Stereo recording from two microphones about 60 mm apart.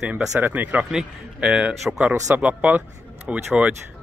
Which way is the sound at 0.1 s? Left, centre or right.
Right.